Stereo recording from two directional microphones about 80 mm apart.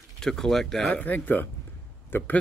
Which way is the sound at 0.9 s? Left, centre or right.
Centre.